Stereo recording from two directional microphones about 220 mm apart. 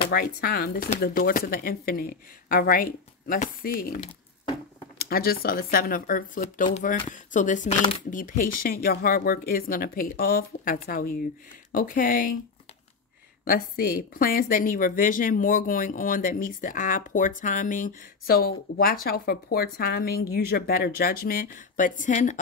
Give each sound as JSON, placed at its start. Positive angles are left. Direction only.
{"t": 0.1, "sound": "a woman's voice", "side_deg": 45}
{"t": 5.0, "sound": "a woman's voice", "side_deg": 45}
{"t": 13.5, "sound": "a woman's voice", "side_deg": 40}